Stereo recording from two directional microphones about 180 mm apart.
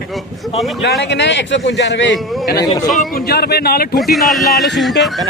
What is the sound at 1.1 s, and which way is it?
A man's voice, 80° left.